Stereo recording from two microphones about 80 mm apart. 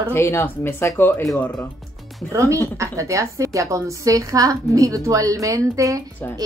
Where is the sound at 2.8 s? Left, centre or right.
Right.